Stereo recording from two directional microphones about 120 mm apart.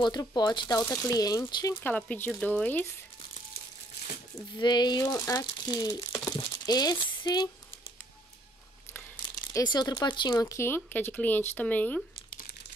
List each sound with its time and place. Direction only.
0.0 s speech: 35° left (ahead or behind)
1.8 s speech: 15° left (ahead or behind)
4.6 s speech: 35° left (ahead or behind)
9.5 s speech: 35° left (ahead or behind); by 12.0 s 10° left (ahead or behind)